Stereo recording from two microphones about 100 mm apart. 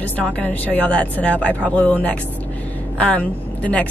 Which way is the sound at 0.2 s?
15° left (ahead or behind).